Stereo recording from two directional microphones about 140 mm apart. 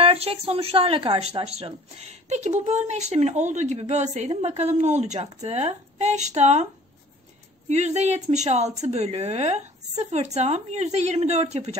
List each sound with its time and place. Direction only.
0.0 s speech: 45° right (ahead or behind)
7.7 s speech: 55° right (ahead or behind)